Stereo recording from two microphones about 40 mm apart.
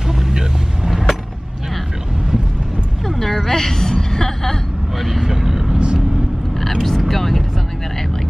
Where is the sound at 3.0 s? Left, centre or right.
Centre.